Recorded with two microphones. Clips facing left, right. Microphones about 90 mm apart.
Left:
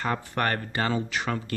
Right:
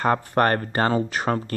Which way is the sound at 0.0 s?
45° right (ahead or behind).